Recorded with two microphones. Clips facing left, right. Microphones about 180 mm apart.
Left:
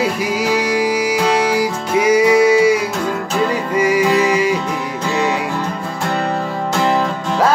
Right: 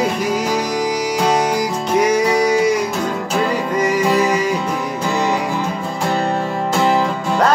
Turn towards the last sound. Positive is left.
turn(degrees=0)  # may be behind; listen again after turning